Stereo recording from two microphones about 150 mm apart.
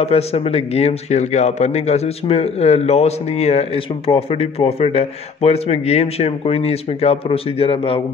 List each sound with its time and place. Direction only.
0.0 s speech: 40° left (ahead or behind)